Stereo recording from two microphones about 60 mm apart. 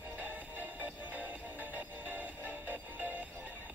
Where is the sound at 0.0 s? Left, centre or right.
Right.